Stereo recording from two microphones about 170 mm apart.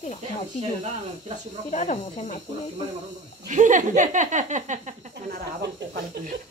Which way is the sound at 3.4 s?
45° right (ahead or behind).